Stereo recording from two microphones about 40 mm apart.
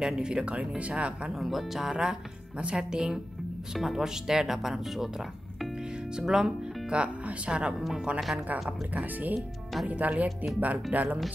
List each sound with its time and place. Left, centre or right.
0.2 s speech: right
1.3 s speech: centre
2.5 s speech: right
2.8 s speech: centre
6.2 s speech: centre
6.9 s speech: right
8.6 s speech: right